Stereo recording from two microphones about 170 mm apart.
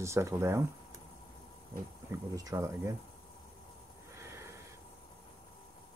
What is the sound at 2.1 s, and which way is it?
Speech, 20° right (ahead or behind).